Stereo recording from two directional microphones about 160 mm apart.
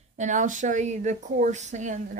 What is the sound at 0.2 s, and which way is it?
Speech, 50° right (ahead or behind).